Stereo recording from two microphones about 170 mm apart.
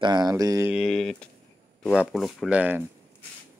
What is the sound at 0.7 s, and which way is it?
Speech, centre (ahead or behind).